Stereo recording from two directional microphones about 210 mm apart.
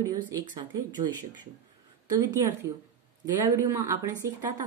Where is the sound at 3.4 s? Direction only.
15° right (ahead or behind).